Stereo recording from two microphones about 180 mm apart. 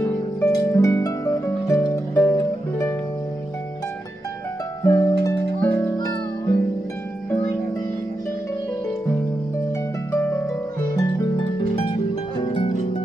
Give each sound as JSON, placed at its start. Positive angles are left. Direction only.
{"t": 0.0, "sound": "harp", "side_deg": 15}
{"t": 4.8, "sound": "music", "side_deg": 15}
{"t": 10.1, "sound": "harp", "side_deg": 10}
{"t": 12.4, "sound": "harp", "side_deg": 30}